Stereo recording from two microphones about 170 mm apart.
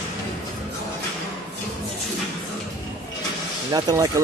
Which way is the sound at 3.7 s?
20° right (ahead or behind).